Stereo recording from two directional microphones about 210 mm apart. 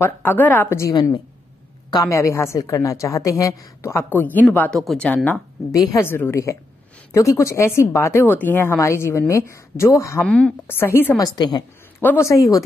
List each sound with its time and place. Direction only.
0.0 s a woman's voice: 10° left (ahead or behind)